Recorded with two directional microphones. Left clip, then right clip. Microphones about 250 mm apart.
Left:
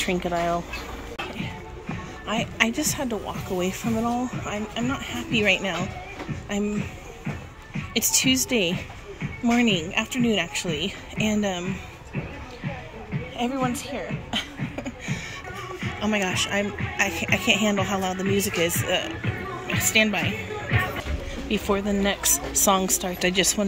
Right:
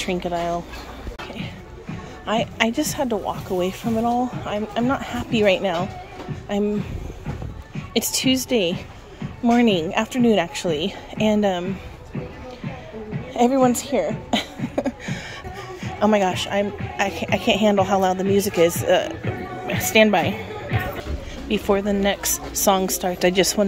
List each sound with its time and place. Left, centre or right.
0.0 s speech: centre
2.2 s a woman's voice: centre
7.9 s a woman's voice: centre
13.4 s a woman's voice: right
21.5 s a woman's voice: centre